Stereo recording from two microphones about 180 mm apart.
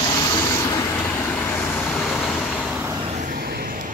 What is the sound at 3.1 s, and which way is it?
Vehicle, 55° right (ahead or behind).